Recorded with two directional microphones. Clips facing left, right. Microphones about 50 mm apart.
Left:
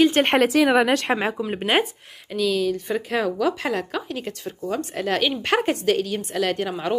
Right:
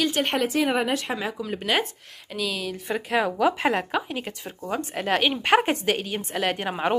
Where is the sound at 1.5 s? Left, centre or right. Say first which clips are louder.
Left 3 dB; left.